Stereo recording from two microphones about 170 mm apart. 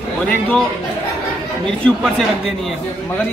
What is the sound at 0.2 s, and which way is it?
Speech, 5° left (ahead or behind).